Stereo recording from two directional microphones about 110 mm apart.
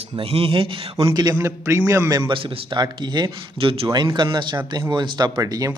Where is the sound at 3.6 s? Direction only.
60° right (ahead or behind).